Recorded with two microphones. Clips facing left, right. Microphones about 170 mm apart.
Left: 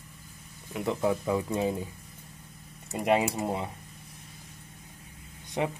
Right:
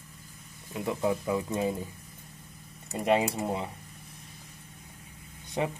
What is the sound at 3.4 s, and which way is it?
Speech, 25° left (ahead or behind).